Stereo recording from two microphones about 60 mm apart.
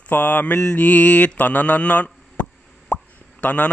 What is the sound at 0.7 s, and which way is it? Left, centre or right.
Speech, left.